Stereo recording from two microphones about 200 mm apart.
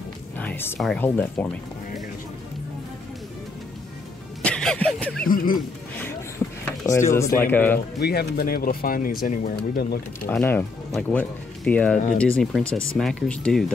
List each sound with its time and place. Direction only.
0.4 s speech: 10° left (ahead or behind)
4.4 s a sound: 5° left (ahead or behind)
5.2 s speech: 45° left (ahead or behind)
6.4 s a sound: 10° left (ahead or behind)
7.1 s speech: 15° left (ahead or behind)
8.0 s speech: 50° left (ahead or behind)
10.2 s speech: 10° left (ahead or behind)